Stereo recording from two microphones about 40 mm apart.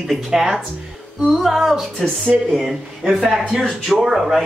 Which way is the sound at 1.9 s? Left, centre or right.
Centre.